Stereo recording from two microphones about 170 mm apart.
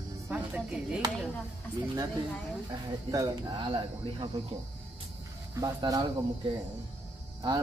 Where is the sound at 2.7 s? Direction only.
25° right (ahead or behind).